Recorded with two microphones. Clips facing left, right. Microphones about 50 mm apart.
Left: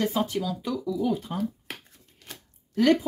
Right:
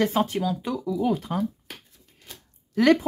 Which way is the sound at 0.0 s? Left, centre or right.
Right.